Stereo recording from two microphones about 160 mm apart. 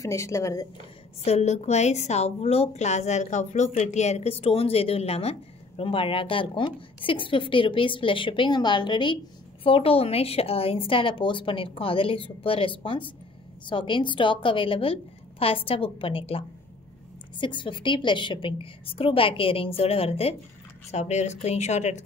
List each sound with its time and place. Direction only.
0.0 s a woman's voice: 20° left (ahead or behind)
1.2 s a woman's voice: 40° left (ahead or behind)